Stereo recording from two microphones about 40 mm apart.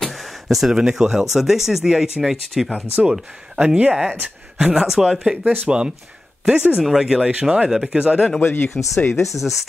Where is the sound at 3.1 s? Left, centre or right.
Centre.